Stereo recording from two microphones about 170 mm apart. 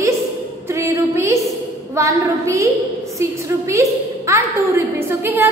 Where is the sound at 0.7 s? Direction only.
15° right (ahead or behind).